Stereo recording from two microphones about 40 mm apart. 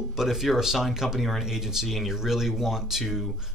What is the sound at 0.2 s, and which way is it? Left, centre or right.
Speech, centre.